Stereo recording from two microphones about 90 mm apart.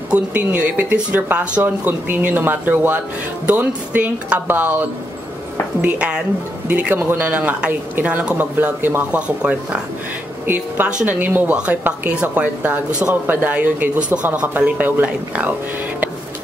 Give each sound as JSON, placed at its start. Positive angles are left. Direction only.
{"t": 0.1, "sound": "speech", "side_deg": -15}